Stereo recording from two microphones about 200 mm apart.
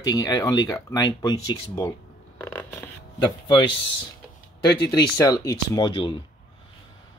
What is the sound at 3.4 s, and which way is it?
Speech, 25° left (ahead or behind).